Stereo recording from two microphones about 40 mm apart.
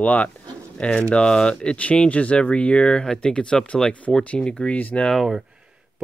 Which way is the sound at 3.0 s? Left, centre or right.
Centre.